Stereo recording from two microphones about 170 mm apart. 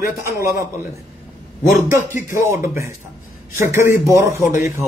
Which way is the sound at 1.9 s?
15° right (ahead or behind).